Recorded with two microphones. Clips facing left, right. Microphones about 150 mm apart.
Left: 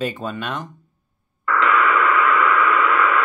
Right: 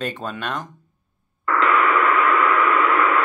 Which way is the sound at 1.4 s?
25° right (ahead or behind).